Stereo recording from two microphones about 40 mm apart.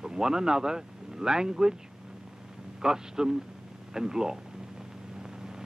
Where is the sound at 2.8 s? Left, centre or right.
Centre.